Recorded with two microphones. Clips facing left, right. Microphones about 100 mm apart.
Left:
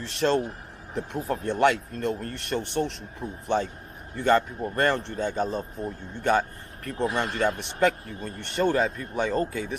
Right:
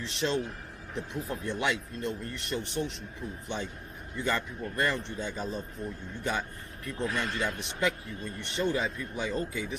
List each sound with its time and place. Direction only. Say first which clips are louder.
0.0 s speech: left 6 dB; 50° left (ahead or behind)
5.6 s speech: left 5 dB; 40° left (ahead or behind)
6.2 s speech: left 10 dB; 50° left (ahead or behind)
7.2 s speech: left 6 dB; 40° left (ahead or behind)